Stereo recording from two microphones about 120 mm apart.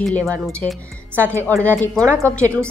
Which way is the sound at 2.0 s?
25° right (ahead or behind).